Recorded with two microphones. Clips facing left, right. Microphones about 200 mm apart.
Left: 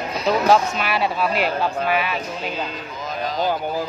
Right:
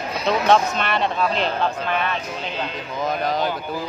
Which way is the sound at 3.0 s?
60° right (ahead or behind).